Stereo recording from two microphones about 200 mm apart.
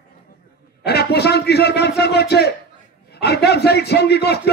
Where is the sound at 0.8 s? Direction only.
55° left (ahead or behind).